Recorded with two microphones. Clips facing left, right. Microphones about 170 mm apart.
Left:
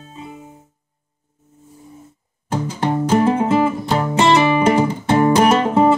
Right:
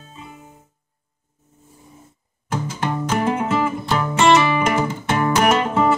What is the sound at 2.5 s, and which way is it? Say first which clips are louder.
Music: left 4 dB; 30° left (ahead or behind).